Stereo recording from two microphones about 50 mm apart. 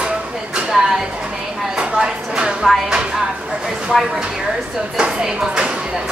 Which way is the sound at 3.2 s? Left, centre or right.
Centre.